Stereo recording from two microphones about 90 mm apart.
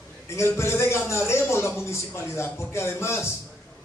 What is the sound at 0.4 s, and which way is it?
Speech, 30° left (ahead or behind).